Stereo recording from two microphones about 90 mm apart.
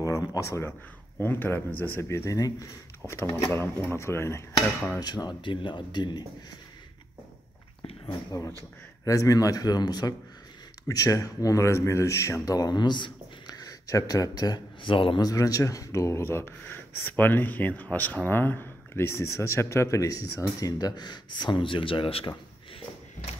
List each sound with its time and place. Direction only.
0.0 s speech: 40° left (ahead or behind)
3.1 s speech: 25° left (ahead or behind)
5.0 s speech: 50° left (ahead or behind)
8.3 s speech: 35° left (ahead or behind)
12.4 s speech: 45° left (ahead or behind)
14.8 s a man's voice: 75° left (ahead or behind)
15.1 s speech: 45° left (ahead or behind); by 22.3 s 85° left